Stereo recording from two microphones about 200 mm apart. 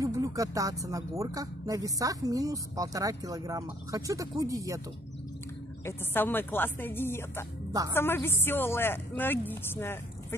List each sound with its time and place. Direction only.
0.0 s speech: 15° right (ahead or behind)
5.9 s speech: 10° left (ahead or behind)